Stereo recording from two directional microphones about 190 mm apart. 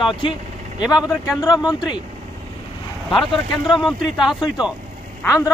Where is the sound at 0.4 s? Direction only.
40° right (ahead or behind).